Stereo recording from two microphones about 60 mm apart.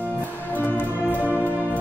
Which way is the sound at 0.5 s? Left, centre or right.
Left.